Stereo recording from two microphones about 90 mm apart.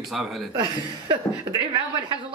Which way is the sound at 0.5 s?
60° right (ahead or behind).